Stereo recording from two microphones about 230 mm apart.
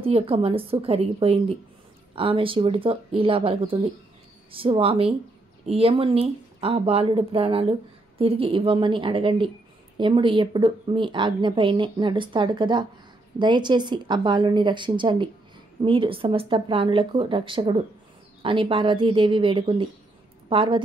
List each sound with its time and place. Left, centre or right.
0.0 s a woman's voice: right